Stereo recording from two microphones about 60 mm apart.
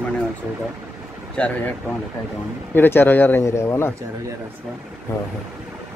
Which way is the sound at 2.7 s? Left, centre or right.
Left.